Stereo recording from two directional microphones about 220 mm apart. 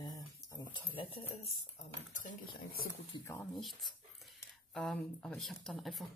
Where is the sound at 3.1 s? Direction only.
10° left (ahead or behind).